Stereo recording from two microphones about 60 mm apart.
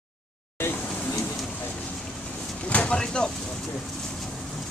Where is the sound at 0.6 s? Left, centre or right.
Left.